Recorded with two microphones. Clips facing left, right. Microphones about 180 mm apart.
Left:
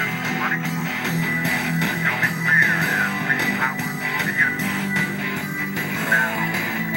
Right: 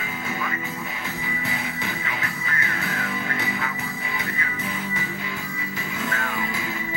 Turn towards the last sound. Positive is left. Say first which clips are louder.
# left 4 dB
turn(degrees=70)  # may be behind; listen again after turning